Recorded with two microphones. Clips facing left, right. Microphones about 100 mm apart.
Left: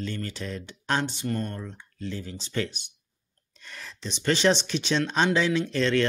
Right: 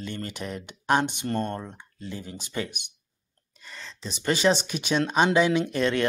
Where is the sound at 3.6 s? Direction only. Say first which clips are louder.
Even; centre (ahead or behind); by 6.0 s 15° right (ahead or behind).